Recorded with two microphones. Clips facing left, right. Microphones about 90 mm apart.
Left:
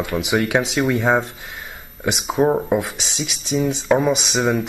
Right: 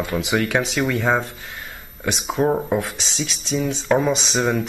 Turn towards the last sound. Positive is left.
turn(degrees=5)  # may be behind; listen again after turning